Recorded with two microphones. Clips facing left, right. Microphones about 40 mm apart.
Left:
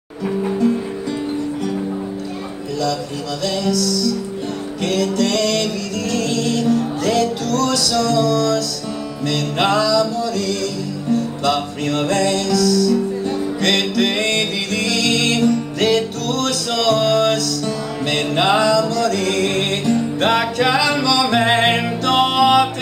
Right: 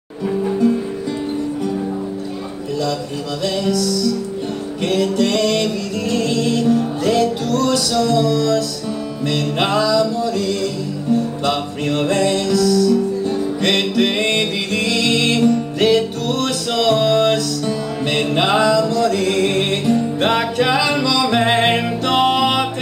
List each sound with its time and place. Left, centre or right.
3.4 s music: right; by 22.7 s centre